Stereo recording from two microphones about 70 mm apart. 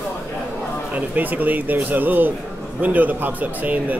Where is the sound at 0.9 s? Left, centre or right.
Right.